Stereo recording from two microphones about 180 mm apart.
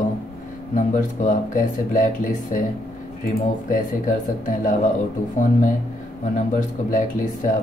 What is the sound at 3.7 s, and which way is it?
Speech, 45° left (ahead or behind).